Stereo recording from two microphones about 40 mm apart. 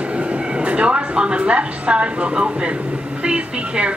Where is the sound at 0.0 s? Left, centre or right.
Right.